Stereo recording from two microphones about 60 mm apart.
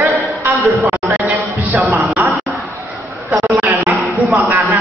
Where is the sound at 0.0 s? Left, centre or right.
Right.